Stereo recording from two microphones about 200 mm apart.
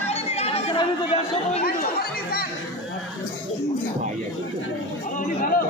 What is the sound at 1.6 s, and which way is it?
Chatter, 50° left (ahead or behind).